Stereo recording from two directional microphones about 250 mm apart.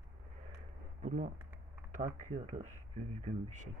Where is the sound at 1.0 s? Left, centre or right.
Right.